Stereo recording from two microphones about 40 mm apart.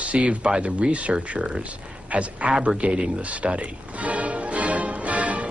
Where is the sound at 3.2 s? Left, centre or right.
Right.